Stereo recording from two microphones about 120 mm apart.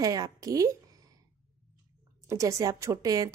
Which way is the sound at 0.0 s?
30° right (ahead or behind).